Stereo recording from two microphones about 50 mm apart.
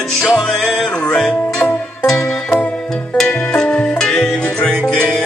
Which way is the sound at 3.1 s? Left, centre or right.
Centre.